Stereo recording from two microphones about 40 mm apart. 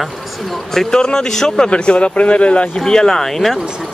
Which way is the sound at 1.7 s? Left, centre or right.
Left.